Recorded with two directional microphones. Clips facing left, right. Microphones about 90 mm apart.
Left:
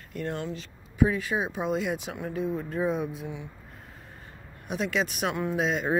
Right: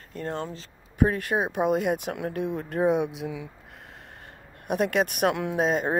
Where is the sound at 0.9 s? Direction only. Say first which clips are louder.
Right 1 dB; 55° right (ahead or behind); by 3.3 s 75° right (ahead or behind).